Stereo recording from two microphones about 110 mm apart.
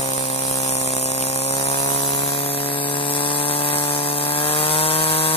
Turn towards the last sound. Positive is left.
turn(degrees=60)  # may be behind; listen again after turning